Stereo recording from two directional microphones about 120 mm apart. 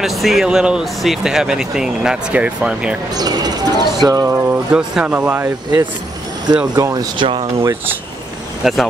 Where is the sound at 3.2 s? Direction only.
35° right (ahead or behind).